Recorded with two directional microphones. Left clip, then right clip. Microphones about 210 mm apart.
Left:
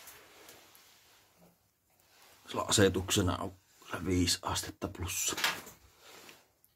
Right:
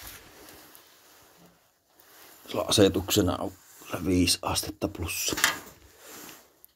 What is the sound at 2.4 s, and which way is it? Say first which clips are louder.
Speech: right 6 dB; 10° right (ahead or behind).